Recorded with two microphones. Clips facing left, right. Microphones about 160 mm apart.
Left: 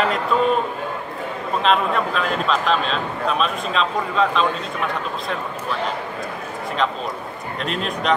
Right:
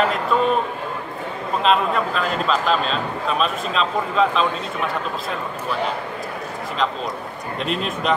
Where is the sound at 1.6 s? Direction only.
Centre (ahead or behind).